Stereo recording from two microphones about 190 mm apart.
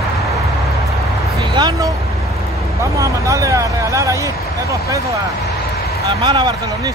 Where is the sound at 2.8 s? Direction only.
15° right (ahead or behind).